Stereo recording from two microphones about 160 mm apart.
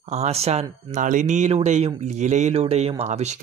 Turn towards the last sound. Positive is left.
turn(degrees=-45)  # may be behind; listen again after turning